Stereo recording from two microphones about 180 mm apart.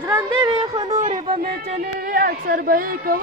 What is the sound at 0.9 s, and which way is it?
Speech, 40° right (ahead or behind).